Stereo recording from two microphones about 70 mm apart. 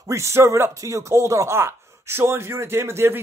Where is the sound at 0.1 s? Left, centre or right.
Right.